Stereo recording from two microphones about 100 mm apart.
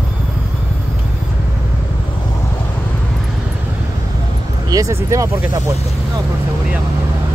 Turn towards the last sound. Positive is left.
turn(degrees=-30)  # may be behind; listen again after turning